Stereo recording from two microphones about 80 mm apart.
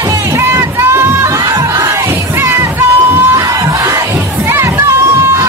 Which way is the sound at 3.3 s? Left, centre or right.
Right.